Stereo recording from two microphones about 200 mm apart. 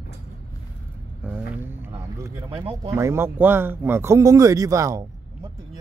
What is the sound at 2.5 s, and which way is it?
Speech, 30° right (ahead or behind).